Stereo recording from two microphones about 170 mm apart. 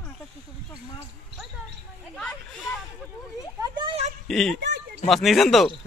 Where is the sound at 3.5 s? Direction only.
25° right (ahead or behind).